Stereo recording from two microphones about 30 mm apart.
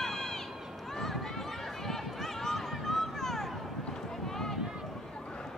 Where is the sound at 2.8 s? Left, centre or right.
Centre.